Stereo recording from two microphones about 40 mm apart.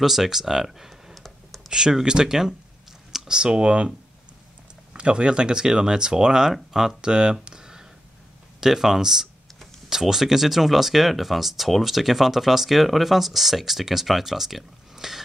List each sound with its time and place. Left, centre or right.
0.0 s speech: centre
1.1 s computer keyboard: centre
1.7 s speech: centre
4.9 s speech: right; by 7.1 s centre
7.1 s speech: right
7.4 s a sound: centre
8.5 s speech: centre